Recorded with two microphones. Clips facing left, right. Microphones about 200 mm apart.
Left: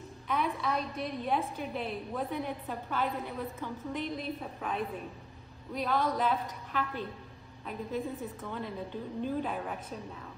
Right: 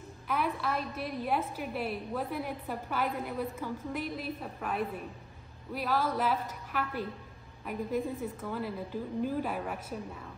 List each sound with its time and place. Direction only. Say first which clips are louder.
0.3 s a woman's voice: even; 5° right (ahead or behind)
8.2 s a woman's voice: right 3 dB; 5° right (ahead or behind)